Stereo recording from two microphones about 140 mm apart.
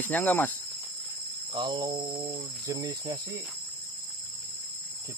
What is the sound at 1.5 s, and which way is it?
Cricket, 35° right (ahead or behind).